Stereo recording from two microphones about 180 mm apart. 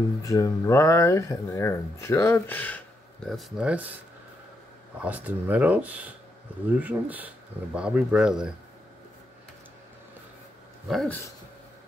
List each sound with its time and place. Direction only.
0.2 s speech: 20° left (ahead or behind); by 3.9 s 5° right (ahead or behind)
5.0 s speech: 10° right (ahead or behind)
10.9 s speech: centre (ahead or behind)